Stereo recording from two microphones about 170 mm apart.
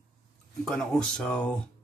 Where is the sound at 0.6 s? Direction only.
5° left (ahead or behind).